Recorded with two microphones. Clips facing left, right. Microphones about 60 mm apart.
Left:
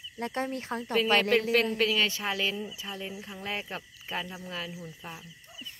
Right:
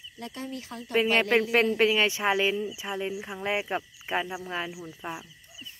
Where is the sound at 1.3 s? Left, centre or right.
Right.